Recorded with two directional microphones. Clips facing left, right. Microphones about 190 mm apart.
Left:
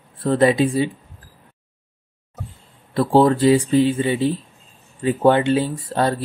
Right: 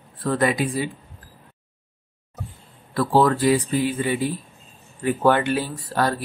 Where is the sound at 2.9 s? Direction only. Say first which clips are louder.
Left 3 dB; 25° left (ahead or behind).